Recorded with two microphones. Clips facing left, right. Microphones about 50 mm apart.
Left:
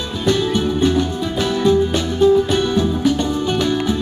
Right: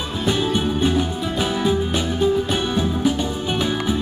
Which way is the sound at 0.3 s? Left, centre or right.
Centre.